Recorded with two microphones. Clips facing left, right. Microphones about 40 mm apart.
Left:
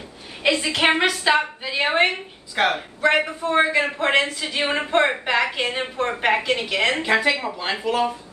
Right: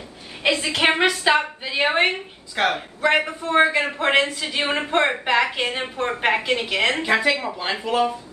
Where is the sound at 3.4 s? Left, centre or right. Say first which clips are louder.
Right 1 dB; centre.